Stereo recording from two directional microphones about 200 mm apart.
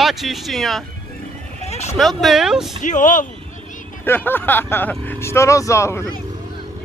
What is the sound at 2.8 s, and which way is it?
Speech, 40° left (ahead or behind).